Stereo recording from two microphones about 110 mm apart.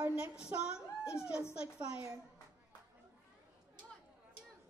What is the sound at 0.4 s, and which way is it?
Speech, 5° right (ahead or behind).